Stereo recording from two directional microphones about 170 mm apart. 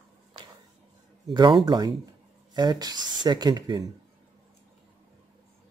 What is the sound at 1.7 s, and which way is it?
Speech, 25° right (ahead or behind).